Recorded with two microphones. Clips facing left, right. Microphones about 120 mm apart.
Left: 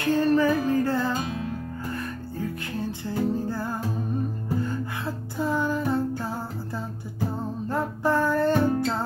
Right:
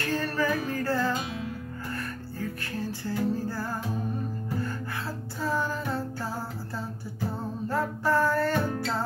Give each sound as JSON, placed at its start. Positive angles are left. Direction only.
{"t": 0.0, "sound": "music", "side_deg": 20}
{"t": 2.8, "sound": "music", "side_deg": 20}
{"t": 7.7, "sound": "music", "side_deg": 20}